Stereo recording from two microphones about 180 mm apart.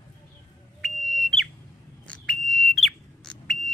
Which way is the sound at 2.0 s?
5° left (ahead or behind).